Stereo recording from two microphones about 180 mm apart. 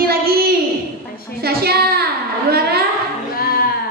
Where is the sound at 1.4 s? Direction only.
60° right (ahead or behind).